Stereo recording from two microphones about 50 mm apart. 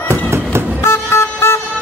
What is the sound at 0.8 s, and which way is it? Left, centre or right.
Vehicle, left.